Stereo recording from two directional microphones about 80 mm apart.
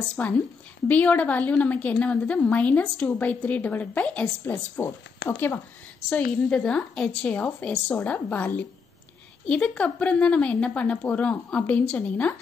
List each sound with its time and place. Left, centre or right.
0.1 s a woman's voice: centre
4.5 s speech: left
6.0 s a woman's voice: centre